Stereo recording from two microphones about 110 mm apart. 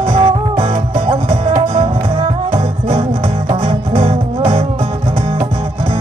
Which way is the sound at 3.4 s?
65° right (ahead or behind).